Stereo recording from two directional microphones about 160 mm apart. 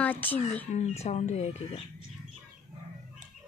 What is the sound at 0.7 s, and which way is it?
Speech, 45° left (ahead or behind).